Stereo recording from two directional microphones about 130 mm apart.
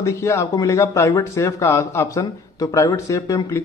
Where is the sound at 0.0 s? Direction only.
20° left (ahead or behind).